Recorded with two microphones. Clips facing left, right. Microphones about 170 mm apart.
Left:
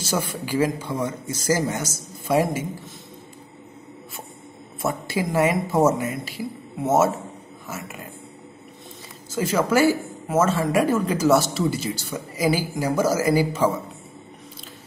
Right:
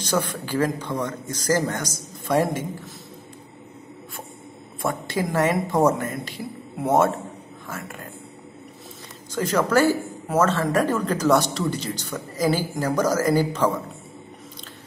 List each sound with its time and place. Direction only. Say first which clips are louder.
0.0 s speech: right 1 dB; 5° left (ahead or behind)
4.8 s speech: even; 5° left (ahead or behind)
9.3 s speech: even; 5° left (ahead or behind)